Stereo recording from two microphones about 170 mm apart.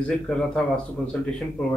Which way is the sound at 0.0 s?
5° left (ahead or behind).